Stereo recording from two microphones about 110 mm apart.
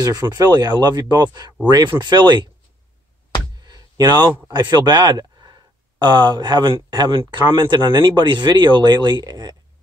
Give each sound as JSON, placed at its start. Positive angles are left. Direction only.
{"t": 0.0, "sound": "speech", "side_deg": -40}
{"t": 3.5, "sound": "a sound", "side_deg": -35}
{"t": 4.5, "sound": "speech", "side_deg": -40}